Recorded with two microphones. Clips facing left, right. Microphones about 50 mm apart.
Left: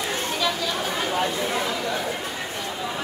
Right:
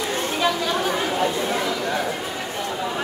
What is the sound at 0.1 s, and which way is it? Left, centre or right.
Chatter, right.